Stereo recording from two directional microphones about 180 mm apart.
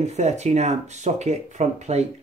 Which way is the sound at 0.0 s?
40° right (ahead or behind).